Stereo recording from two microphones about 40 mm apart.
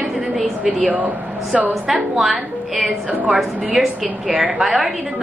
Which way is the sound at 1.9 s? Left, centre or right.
Centre.